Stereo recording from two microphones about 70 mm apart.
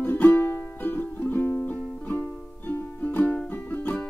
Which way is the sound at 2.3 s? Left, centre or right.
Centre.